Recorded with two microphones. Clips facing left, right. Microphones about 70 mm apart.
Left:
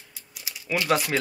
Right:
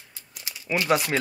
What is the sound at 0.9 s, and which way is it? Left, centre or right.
Speech, centre.